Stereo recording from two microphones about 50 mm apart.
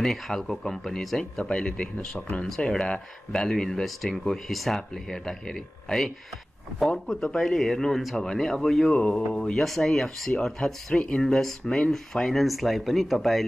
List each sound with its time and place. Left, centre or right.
0.0 s speech: centre
7.1 s speech: centre